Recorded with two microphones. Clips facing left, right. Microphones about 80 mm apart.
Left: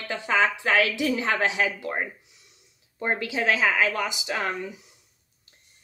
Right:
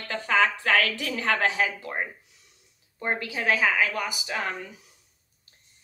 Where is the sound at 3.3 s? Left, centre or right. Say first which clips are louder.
Left 1 dB; left.